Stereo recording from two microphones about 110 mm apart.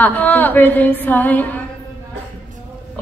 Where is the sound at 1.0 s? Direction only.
15° left (ahead or behind).